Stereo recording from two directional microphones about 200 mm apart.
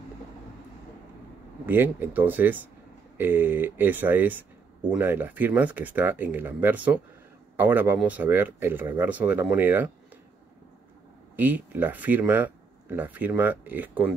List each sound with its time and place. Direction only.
1.7 s speech: 10° right (ahead or behind)
11.3 s speech: 10° right (ahead or behind)